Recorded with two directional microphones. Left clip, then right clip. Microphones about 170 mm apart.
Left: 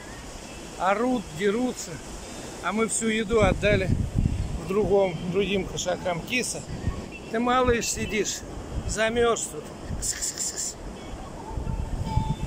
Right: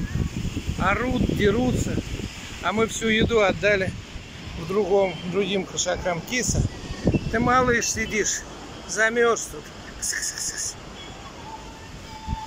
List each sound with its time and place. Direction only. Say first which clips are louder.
0.8 s speech: right 1 dB; 10° left (ahead or behind)
2.6 s speech: right 3 dB; centre (ahead or behind)
10.2 s whispering: right 2 dB; 25° left (ahead or behind)